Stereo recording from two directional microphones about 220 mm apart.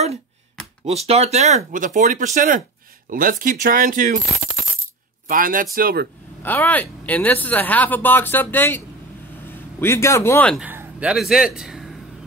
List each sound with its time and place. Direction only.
0.8 s speech: 30° right (ahead or behind)
5.3 s speech: 40° right (ahead or behind)
6.4 s a man's voice: 10° left (ahead or behind)
10.5 s a man's voice: 5° right (ahead or behind)